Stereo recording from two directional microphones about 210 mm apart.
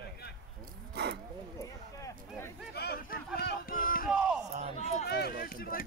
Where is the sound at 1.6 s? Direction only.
15° left (ahead or behind).